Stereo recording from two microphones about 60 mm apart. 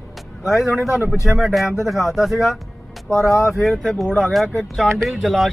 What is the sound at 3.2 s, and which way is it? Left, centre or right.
Speech, left.